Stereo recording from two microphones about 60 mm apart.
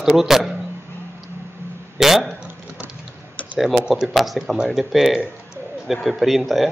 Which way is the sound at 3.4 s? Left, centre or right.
Left.